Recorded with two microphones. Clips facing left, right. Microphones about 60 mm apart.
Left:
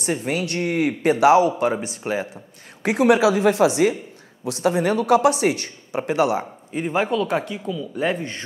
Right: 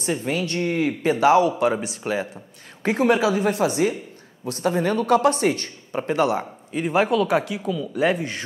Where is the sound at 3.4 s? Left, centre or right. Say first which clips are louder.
Left 4 dB; left.